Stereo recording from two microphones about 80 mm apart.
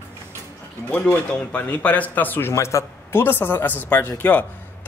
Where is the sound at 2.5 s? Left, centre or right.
Left.